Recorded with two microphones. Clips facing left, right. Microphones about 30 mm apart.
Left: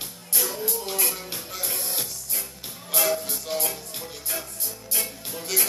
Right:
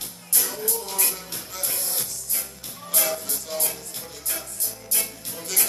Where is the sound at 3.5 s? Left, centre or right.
Centre.